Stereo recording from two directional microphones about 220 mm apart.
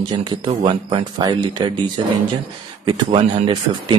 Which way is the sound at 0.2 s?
20° right (ahead or behind).